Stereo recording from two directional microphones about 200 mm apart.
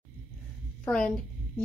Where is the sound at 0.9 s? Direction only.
5° left (ahead or behind).